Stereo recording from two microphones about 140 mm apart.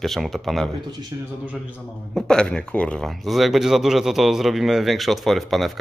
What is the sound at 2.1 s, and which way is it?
Speech, 5° left (ahead or behind).